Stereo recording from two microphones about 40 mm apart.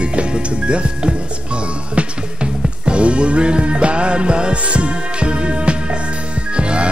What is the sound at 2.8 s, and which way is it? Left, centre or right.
Music, right.